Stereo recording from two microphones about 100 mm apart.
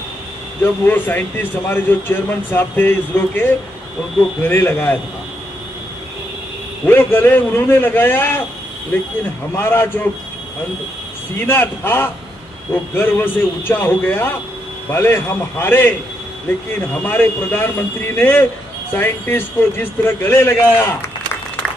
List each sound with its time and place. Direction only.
0.8 s speech: 20° left (ahead or behind)
6.9 s speech: 20° left (ahead or behind)
9.6 s speech: 20° left (ahead or behind)
11.4 s speech: 20° left (ahead or behind)
17.0 s speech: 20° left (ahead or behind)